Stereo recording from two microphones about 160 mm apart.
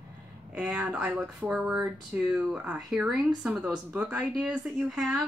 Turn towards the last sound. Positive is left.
turn(degrees=-5)  # may be behind; listen again after turning